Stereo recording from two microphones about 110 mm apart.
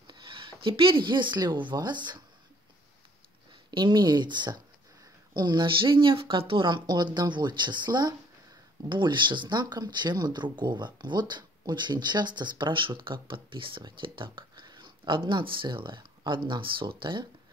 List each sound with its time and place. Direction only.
0.0 s speech: 45° right (ahead or behind)
3.7 s speech: 40° right (ahead or behind)